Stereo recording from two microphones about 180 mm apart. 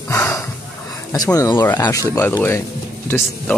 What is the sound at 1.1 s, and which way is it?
Speech, 20° left (ahead or behind).